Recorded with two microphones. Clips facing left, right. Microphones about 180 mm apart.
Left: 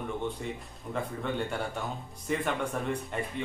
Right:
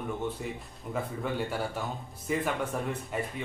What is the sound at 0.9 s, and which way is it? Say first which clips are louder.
Speech: even; 5° right (ahead or behind).